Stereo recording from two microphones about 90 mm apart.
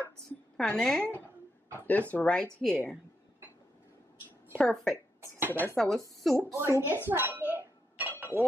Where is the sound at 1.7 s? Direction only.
20° left (ahead or behind).